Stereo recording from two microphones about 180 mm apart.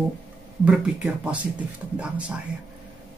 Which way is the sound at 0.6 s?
5° right (ahead or behind).